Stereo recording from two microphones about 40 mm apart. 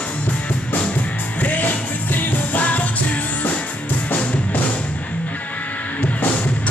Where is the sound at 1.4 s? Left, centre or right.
Left.